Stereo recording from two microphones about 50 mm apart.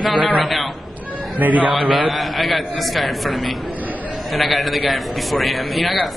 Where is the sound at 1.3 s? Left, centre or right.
Right.